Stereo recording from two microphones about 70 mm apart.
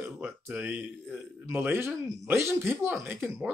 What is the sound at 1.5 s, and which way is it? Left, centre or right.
Speech, right.